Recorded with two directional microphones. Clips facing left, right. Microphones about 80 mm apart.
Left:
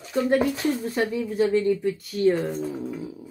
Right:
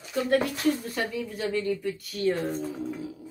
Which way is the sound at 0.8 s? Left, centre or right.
Left.